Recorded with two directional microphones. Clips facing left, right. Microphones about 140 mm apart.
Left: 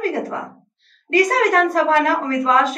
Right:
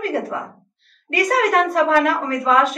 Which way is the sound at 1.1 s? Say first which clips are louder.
Left 1 dB; 35° left (ahead or behind).